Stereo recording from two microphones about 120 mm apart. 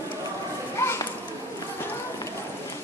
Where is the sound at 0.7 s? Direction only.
20° left (ahead or behind).